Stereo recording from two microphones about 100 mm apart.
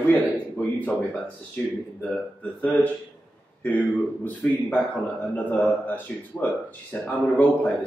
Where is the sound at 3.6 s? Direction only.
15° left (ahead or behind).